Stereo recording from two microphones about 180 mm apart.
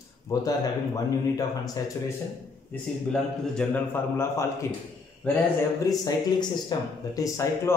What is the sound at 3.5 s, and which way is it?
Speech, 10° left (ahead or behind).